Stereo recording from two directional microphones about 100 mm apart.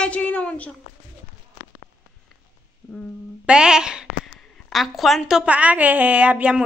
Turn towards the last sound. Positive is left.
turn(degrees=-10)  # may be behind; listen again after turning